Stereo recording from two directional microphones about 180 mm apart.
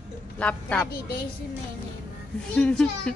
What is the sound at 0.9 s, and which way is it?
Speech, 60° left (ahead or behind).